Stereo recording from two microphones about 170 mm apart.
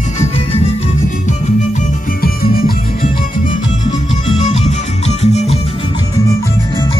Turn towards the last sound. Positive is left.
turn(degrees=40)  # may be behind; listen again after turning